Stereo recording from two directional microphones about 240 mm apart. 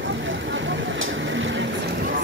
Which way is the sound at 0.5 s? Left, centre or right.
Right.